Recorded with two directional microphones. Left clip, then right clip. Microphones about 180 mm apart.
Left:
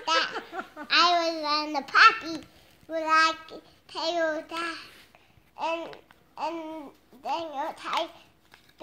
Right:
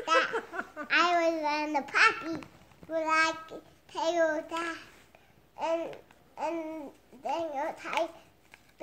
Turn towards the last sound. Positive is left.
turn(degrees=-10)  # may be behind; listen again after turning